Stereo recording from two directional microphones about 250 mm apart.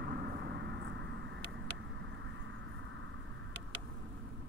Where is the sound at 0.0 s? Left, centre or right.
Right.